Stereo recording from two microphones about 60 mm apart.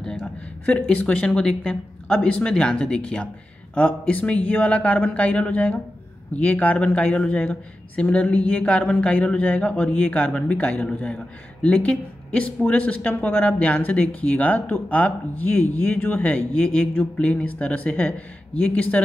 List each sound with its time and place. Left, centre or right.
0.7 s a woman's voice: centre